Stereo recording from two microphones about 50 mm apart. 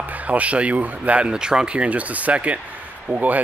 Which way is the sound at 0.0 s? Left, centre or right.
Right.